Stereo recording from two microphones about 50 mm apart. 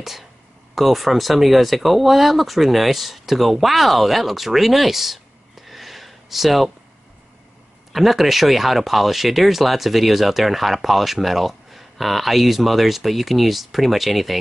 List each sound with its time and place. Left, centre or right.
0.0 s speech: centre
7.9 s speech: centre